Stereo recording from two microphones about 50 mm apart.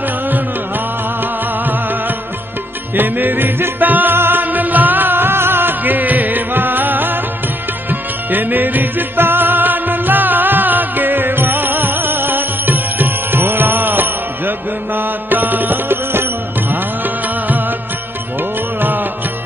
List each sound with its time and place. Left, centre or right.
1.6 s music: right
18.8 s music: right